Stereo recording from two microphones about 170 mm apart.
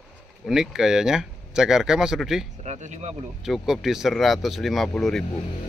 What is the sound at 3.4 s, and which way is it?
Speech, centre (ahead or behind).